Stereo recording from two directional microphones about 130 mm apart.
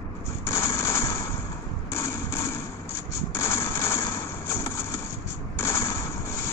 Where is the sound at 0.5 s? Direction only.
20° left (ahead or behind).